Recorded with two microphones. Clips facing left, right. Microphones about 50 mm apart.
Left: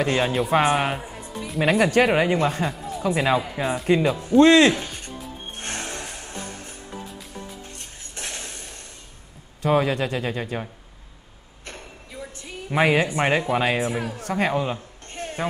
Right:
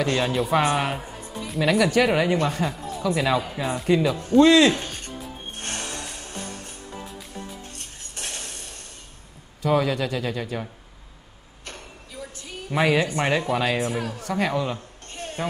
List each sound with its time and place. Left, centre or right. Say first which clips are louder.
0.0 s speech: left 1 dB; left
1.7 s speech: left 1 dB; left
3.6 s speech: left 2 dB; centre
4.4 s speech: left 1 dB; left
5.6 s music: left 1 dB; left
7.7 s a sound: left 1 dB; left
9.6 s speech: left 1 dB; left
11.6 s a sound: left 1 dB; left
13.1 s speech: left 2 dB; left
14.1 s speech: left 2 dB; left